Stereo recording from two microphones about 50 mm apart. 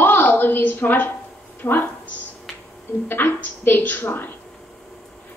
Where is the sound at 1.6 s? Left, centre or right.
Left.